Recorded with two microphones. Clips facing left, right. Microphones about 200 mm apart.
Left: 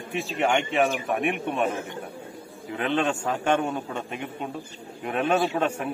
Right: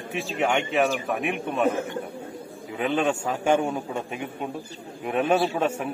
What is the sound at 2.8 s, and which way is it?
A man's voice, 10° right (ahead or behind).